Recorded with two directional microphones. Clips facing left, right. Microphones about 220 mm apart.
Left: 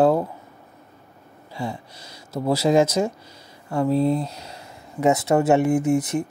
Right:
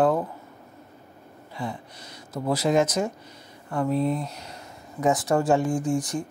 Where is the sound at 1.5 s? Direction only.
30° left (ahead or behind).